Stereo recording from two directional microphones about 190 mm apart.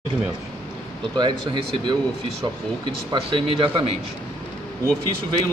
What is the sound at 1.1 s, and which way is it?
Speech, 25° right (ahead or behind).